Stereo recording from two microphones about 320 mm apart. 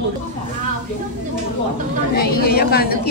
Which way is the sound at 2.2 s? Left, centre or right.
Left.